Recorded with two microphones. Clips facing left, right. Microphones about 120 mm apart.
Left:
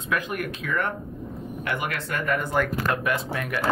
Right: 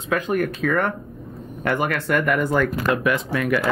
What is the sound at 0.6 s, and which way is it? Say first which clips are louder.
Speech: right 7 dB; 90° right.